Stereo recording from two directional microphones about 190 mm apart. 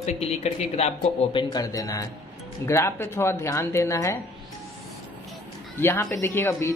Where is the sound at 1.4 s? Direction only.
20° left (ahead or behind).